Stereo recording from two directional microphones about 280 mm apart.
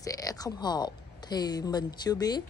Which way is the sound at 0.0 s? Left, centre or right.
Centre.